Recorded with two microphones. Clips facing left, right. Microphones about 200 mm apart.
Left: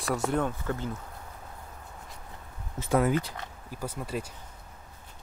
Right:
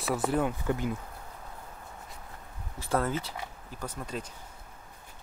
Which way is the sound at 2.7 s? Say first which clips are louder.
Left 4 dB; 15° left (ahead or behind).